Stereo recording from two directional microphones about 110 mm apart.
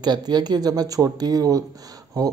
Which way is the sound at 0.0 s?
40° right (ahead or behind).